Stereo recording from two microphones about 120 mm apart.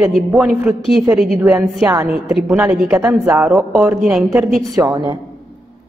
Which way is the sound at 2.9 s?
25° right (ahead or behind).